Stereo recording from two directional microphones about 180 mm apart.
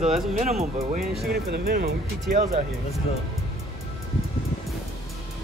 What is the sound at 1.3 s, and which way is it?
Speech, 60° right (ahead or behind).